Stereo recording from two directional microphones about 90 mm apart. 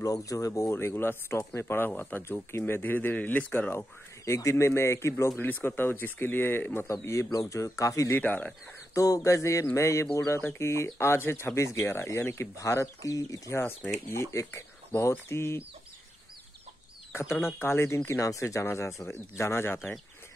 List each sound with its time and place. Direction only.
0.0 s speech: 40° left (ahead or behind); by 3.8 s 20° left (ahead or behind)
4.2 s speech: 35° left (ahead or behind)
8.2 s speech: 20° left (ahead or behind)
8.9 s speech: 40° left (ahead or behind)
17.1 s speech: 30° left (ahead or behind)